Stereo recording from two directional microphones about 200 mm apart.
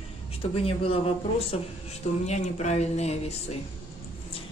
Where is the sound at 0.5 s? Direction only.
30° left (ahead or behind).